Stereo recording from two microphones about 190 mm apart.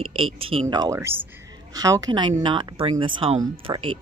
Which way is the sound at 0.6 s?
20° right (ahead or behind).